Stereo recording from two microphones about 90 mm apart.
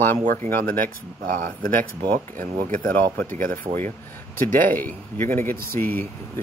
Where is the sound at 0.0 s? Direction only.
25° left (ahead or behind).